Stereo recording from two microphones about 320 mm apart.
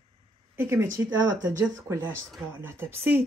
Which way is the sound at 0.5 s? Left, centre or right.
Centre.